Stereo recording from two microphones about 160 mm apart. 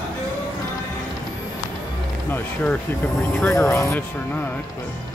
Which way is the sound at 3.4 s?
15° left (ahead or behind).